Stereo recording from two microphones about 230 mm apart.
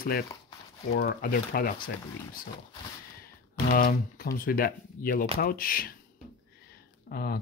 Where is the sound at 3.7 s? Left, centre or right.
Left.